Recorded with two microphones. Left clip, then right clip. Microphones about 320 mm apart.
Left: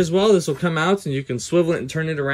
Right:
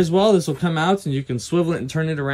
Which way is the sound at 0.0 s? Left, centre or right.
Centre.